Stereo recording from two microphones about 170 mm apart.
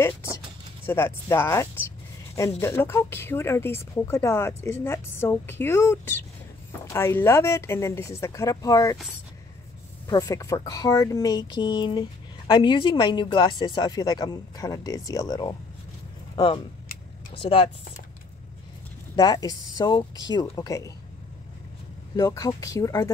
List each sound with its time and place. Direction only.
0.8 s speech: 15° left (ahead or behind)
10.0 s speech: 20° left (ahead or behind)
17.4 s speech: 30° left (ahead or behind)
19.1 s speech: 20° left (ahead or behind)
22.1 s speech: 20° left (ahead or behind)